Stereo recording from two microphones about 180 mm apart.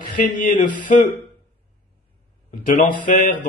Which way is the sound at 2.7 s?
50° left (ahead or behind).